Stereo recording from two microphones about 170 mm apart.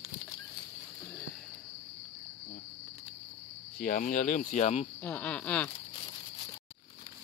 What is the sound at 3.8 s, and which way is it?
Speech, 55° left (ahead or behind).